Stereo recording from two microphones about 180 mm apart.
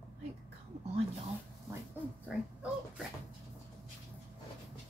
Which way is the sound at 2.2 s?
5° right (ahead or behind).